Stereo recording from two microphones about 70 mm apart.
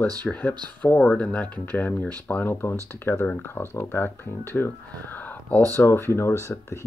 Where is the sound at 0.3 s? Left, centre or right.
Left.